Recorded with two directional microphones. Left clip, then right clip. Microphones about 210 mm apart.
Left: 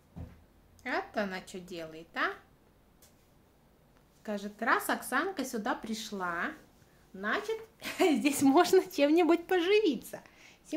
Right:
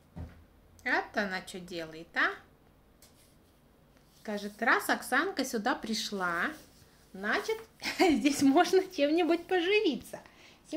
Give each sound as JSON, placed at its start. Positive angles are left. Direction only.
{"t": 0.8, "sound": "speech", "side_deg": 5}
{"t": 4.2, "sound": "speech", "side_deg": 5}
{"t": 8.5, "sound": "speech", "side_deg": 20}
{"t": 8.7, "sound": "speech", "side_deg": 30}